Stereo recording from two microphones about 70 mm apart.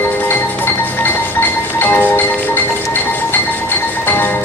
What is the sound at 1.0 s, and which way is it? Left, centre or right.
Music, left.